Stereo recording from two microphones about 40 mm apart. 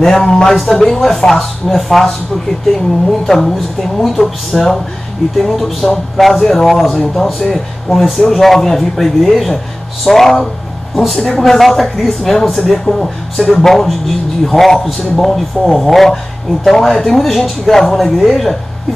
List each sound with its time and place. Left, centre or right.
0.2 s speech: centre